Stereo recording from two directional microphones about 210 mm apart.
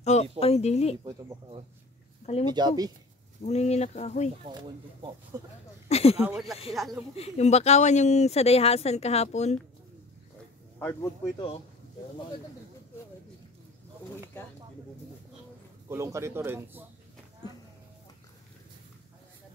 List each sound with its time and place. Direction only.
0.0 s a sound: 30° left (ahead or behind)
0.4 s a woman's voice: 30° left (ahead or behind)
2.5 s speech: 20° right (ahead or behind)
3.4 s speech: 30° left (ahead or behind)
4.5 s speech: 20° right (ahead or behind)
5.9 s a sound: 30° left (ahead or behind)
6.2 s speech: centre (ahead or behind)
7.2 s speech: 30° left (ahead or behind)
10.8 s speech: 10° left (ahead or behind)
15.9 s speech: 15° right (ahead or behind)